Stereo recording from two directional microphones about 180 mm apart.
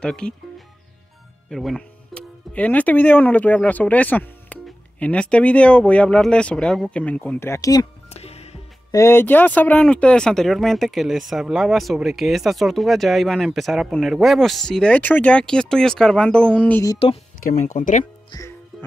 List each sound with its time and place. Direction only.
0.0 s speech: 5° left (ahead or behind)
1.5 s speech: centre (ahead or behind)
8.1 s music: 35° left (ahead or behind)
8.9 s speech: 15° left (ahead or behind)
17.4 s speech: 45° left (ahead or behind)
18.3 s music: 15° left (ahead or behind)